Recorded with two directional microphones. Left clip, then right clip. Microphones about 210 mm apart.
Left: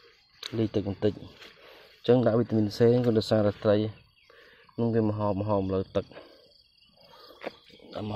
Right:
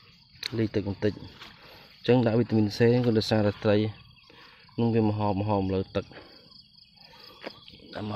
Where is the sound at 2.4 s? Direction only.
10° right (ahead or behind).